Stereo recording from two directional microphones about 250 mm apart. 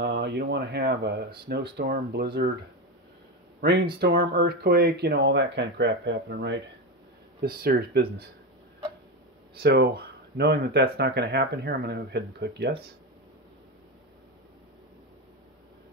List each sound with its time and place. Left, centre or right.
0.0 s speech: right
4.0 s speech: right
9.6 s speech: right